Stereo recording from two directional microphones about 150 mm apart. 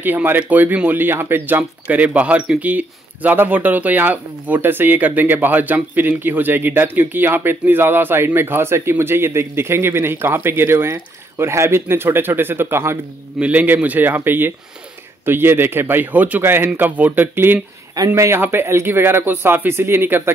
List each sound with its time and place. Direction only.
0.0 s speech: 15° right (ahead or behind)